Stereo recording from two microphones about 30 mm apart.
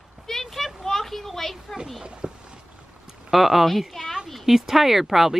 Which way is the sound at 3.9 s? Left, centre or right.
Centre.